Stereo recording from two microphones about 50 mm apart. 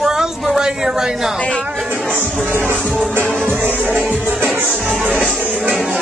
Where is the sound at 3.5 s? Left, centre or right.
Right.